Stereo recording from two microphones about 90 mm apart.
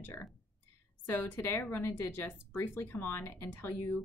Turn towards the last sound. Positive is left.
turn(degrees=20)  # may be behind; listen again after turning